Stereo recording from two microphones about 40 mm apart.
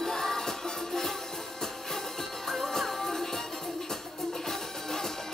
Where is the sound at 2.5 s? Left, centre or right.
Centre.